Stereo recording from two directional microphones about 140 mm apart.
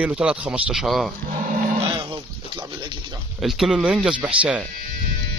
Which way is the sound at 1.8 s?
35° right (ahead or behind).